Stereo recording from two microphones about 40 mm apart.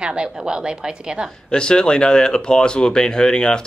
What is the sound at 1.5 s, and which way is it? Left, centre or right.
Speech, left.